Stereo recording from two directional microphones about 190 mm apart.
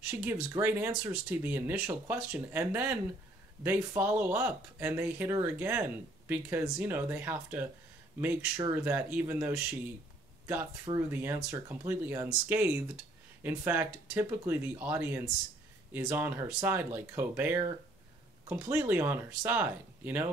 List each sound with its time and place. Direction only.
0.2 s speech: 10° right (ahead or behind)